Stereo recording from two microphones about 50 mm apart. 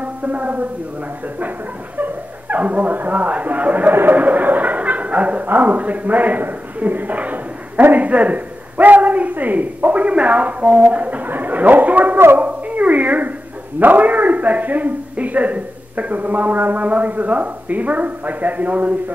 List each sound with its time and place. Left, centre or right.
0.0 s a man's voice: right
2.0 s speech: right
3.9 s a sound: right
4.2 s a man's voice: right
12.4 s a sound: right
13.7 s a man's voice: right